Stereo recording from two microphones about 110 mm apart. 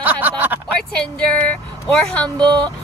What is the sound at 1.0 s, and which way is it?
Speech, 10° left (ahead or behind).